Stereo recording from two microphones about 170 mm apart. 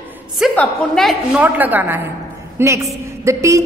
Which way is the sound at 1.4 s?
10° right (ahead or behind).